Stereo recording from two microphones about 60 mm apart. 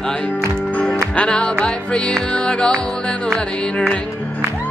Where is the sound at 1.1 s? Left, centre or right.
Centre.